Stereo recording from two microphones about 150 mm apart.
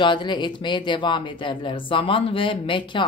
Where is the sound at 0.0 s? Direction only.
30° left (ahead or behind).